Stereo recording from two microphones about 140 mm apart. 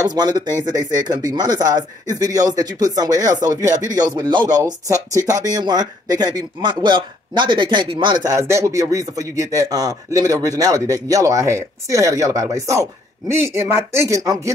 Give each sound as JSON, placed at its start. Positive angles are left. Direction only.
{"t": 0.0, "sound": "speech", "side_deg": -30}
{"t": 8.3, "sound": "speech", "side_deg": -20}